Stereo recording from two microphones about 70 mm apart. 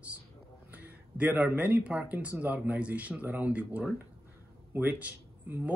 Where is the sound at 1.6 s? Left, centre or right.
Right.